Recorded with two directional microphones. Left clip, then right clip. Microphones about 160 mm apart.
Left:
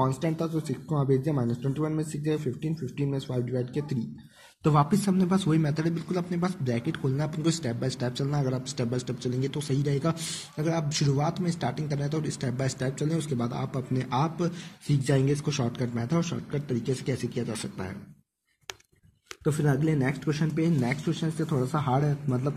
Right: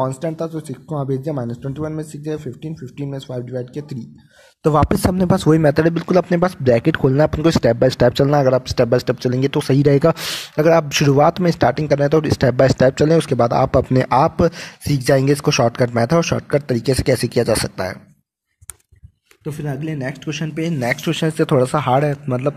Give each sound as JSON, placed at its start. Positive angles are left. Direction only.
{"t": 0.0, "sound": "speech", "side_deg": -25}
{"t": 5.1, "sound": "speech", "side_deg": -60}
{"t": 5.5, "sound": "speech", "side_deg": -50}
{"t": 19.4, "sound": "speech", "side_deg": -5}
{"t": 19.9, "sound": "speech", "side_deg": -25}